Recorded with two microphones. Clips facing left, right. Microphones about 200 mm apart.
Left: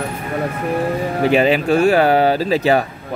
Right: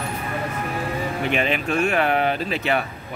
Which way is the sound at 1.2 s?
35° left (ahead or behind).